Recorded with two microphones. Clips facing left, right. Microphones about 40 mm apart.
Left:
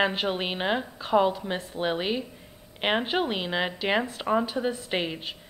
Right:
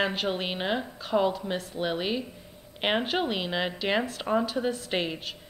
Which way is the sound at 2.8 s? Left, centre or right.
Centre.